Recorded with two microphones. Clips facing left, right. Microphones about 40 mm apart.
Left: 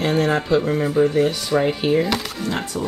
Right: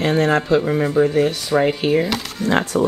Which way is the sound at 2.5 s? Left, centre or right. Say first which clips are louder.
Right 9 dB; right.